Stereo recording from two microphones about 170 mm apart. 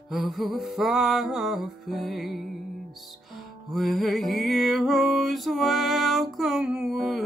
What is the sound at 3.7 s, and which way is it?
Music, centre (ahead or behind).